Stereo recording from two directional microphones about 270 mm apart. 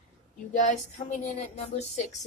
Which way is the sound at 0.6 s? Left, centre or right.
Left.